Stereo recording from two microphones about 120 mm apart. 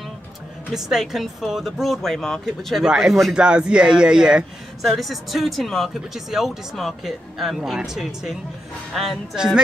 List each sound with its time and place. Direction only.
0.7 s speech: 5° right (ahead or behind)